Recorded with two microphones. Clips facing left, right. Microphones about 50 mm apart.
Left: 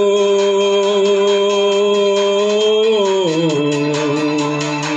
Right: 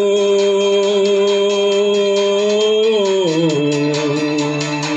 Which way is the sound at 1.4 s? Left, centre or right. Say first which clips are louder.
Even; left.